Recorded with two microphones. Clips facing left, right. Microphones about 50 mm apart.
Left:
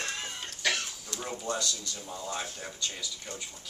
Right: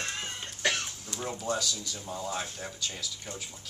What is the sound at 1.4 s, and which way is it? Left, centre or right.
Speech, centre.